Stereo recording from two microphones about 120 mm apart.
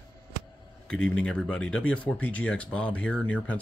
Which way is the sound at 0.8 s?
5° left (ahead or behind).